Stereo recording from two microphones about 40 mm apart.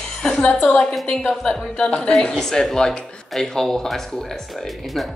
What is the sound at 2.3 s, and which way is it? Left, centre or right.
Speech, centre.